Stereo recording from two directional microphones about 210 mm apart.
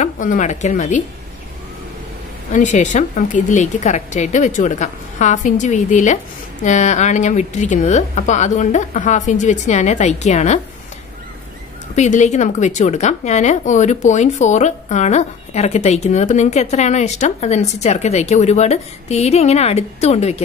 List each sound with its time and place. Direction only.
0.0 s a woman's voice: 35° left (ahead or behind)
2.5 s a woman's voice: 35° left (ahead or behind)
11.9 s a woman's voice: 35° left (ahead or behind)